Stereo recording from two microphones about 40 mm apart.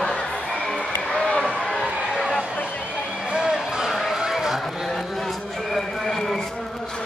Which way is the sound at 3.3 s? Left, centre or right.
Centre.